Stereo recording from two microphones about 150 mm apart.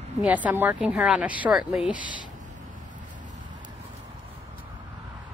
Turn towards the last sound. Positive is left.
turn(degrees=-60)  # may be behind; listen again after turning